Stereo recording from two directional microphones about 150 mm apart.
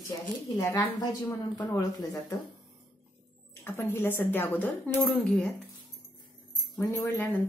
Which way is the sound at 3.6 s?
15° left (ahead or behind).